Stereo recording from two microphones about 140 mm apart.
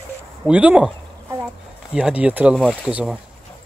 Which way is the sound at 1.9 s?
10° right (ahead or behind).